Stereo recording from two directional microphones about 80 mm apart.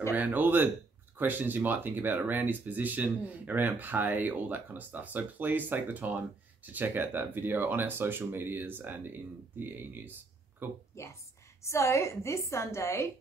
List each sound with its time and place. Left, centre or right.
0.1 s speech: right
11.6 s a woman's voice: left